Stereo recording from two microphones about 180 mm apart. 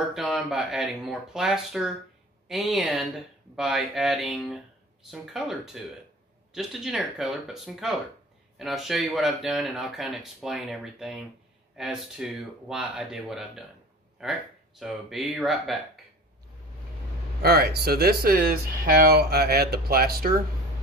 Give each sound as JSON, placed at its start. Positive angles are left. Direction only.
{"t": 0.1, "sound": "speech", "side_deg": 0}
{"t": 17.4, "sound": "speech", "side_deg": -60}